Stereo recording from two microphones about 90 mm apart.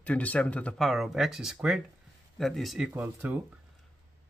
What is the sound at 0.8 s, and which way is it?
Speech, centre (ahead or behind).